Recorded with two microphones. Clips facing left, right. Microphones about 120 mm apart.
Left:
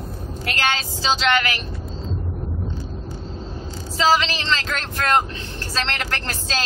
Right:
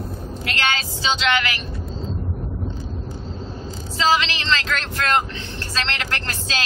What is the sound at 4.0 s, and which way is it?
Speech, 40° left (ahead or behind).